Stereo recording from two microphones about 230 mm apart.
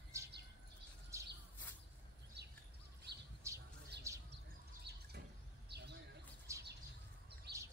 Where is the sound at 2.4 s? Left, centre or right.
Right.